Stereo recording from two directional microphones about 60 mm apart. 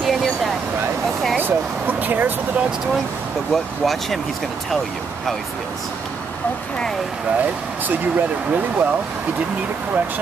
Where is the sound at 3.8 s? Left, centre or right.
Centre.